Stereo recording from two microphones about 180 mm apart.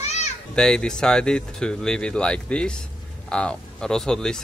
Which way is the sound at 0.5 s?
5° left (ahead or behind).